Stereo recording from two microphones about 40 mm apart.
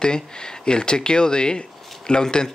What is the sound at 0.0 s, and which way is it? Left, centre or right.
Speech, centre.